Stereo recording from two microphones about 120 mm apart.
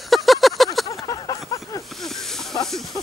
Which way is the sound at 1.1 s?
30° left (ahead or behind).